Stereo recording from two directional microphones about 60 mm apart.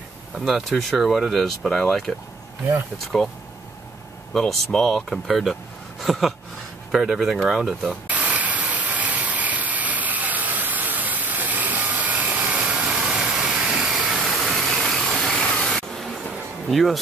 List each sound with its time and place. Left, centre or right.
0.3 s speech: centre
8.1 s a sound: right
12.9 s vehicle: centre
13.7 s a sound: centre
14.2 s vehicle: centre
15.6 s spray: centre
16.6 s speech: centre